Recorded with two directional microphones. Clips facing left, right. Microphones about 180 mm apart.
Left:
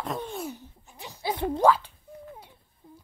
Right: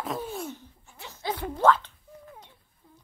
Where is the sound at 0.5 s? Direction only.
15° left (ahead or behind).